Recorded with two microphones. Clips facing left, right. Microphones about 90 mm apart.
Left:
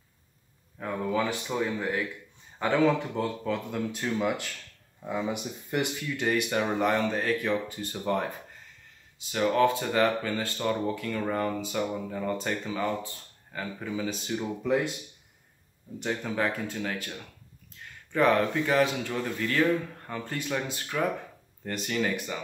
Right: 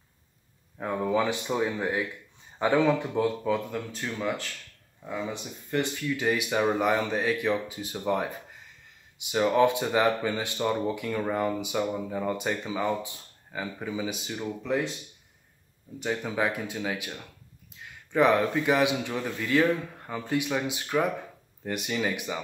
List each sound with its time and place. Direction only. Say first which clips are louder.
0.7 s speech: right 2 dB; 15° right (ahead or behind); by 6.1 s 10° left (ahead or behind)
6.1 s speech: even; 5° right (ahead or behind)
16.2 s speech: even; 10° right (ahead or behind)
18.1 s speech: right 1 dB; 10° right (ahead or behind)